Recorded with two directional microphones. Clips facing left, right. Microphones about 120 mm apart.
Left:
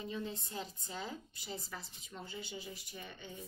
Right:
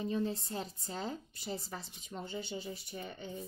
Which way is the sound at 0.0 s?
35° right (ahead or behind).